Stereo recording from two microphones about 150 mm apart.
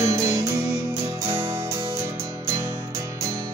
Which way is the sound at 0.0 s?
20° right (ahead or behind).